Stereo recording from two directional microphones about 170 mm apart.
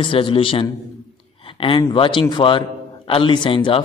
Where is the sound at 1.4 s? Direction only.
30° left (ahead or behind).